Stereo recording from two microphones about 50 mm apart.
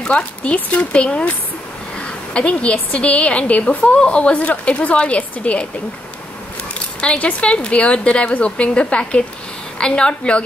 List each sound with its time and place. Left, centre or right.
0.1 s a woman's voice: left
7.0 s a woman's voice: left